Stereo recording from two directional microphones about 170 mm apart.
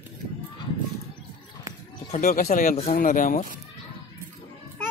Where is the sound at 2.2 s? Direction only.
55° left (ahead or behind).